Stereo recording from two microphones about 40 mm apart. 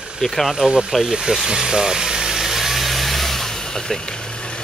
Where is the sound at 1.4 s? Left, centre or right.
Centre; by 4.6 s left.